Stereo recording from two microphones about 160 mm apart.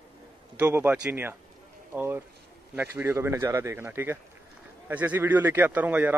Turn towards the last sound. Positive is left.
turn(degrees=-10)  # may be behind; listen again after turning